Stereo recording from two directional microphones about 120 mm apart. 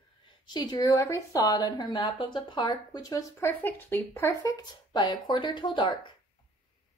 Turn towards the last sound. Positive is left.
turn(degrees=40)  # may be behind; listen again after turning